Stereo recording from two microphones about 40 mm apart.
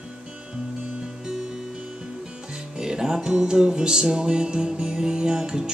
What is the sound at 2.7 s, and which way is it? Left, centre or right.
Music, centre.